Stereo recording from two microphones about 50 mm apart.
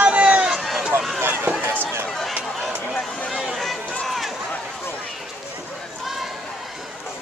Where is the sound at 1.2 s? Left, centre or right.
Right.